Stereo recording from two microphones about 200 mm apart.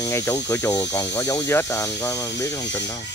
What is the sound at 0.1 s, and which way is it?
Speech, 20° left (ahead or behind).